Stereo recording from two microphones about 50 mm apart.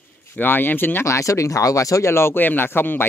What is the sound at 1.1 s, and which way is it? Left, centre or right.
Speech, left.